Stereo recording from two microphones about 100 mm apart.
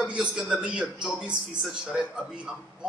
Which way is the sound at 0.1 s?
10° right (ahead or behind).